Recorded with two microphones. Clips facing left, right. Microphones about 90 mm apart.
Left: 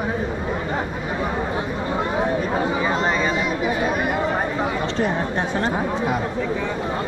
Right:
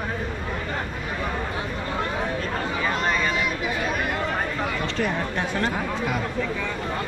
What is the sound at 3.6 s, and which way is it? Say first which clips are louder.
Chatter: left 5 dB; 5° left (ahead or behind).